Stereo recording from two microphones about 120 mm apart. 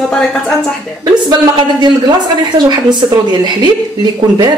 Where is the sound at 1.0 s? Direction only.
40° right (ahead or behind).